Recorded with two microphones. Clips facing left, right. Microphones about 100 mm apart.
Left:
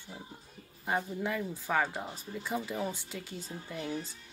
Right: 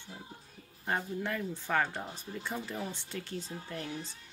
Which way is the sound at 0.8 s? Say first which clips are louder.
Left 1 dB; 5° left (ahead or behind).